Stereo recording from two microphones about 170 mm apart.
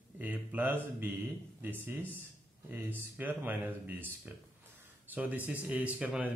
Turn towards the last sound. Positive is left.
turn(degrees=-5)  # may be behind; listen again after turning